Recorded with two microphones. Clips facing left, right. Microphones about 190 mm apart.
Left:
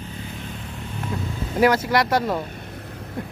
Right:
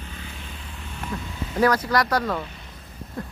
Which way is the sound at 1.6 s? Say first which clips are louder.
Left 2 dB; 25° left (ahead or behind).